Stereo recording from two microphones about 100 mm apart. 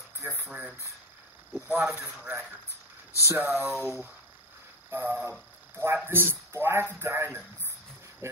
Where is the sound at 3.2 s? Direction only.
25° right (ahead or behind).